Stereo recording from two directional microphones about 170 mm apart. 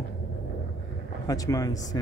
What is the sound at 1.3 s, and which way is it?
Speech, 20° left (ahead or behind).